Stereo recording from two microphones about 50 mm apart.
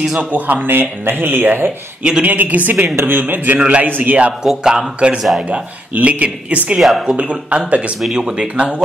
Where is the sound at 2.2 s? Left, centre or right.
Right.